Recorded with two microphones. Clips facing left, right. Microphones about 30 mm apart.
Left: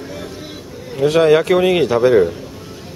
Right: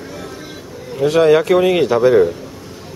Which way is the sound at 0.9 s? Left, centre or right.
Centre.